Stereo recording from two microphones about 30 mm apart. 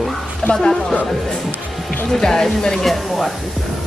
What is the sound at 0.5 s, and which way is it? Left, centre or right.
Speech, left.